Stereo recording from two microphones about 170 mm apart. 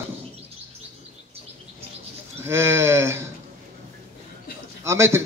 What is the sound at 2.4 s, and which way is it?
Speech, 15° right (ahead or behind).